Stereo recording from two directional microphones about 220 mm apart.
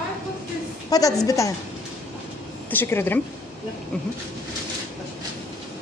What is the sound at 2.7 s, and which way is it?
Speech, 10° left (ahead or behind).